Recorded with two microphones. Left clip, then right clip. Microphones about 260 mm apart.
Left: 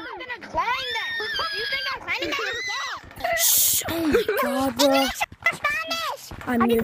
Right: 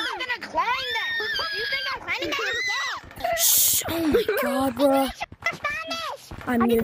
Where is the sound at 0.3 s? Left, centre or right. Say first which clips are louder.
Right 4 dB; centre.